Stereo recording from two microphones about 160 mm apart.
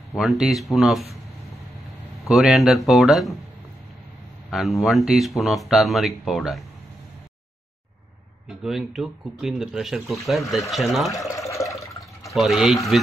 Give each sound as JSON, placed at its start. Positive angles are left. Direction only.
{"t": 0.2, "sound": "speech", "side_deg": 0}
{"t": 2.2, "sound": "speech", "side_deg": 0}
{"t": 4.5, "sound": "speech", "side_deg": 0}
{"t": 8.5, "sound": "speech", "side_deg": 0}
{"t": 11.2, "sound": "a sound", "side_deg": 20}
{"t": 12.3, "sound": "speech", "side_deg": 0}